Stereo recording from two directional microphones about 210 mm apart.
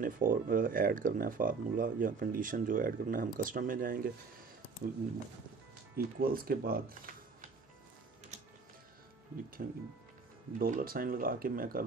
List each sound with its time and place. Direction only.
0.0 s speech: 40° right (ahead or behind)
5.9 s speech: 45° right (ahead or behind)
9.6 s speech: 45° right (ahead or behind)